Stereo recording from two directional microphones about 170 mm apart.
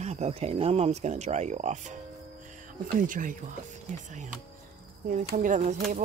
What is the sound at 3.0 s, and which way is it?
Speech, 50° right (ahead or behind).